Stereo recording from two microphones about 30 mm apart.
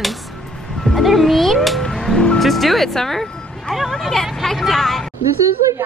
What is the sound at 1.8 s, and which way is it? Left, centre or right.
Music, centre.